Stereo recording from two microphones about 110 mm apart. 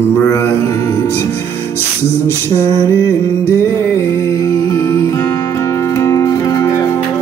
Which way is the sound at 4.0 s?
30° left (ahead or behind).